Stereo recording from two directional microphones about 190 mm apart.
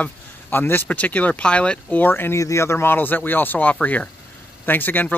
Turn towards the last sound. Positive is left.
turn(degrees=10)  # may be behind; listen again after turning